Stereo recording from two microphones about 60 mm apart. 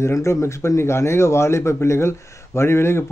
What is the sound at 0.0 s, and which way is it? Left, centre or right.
Speech, left.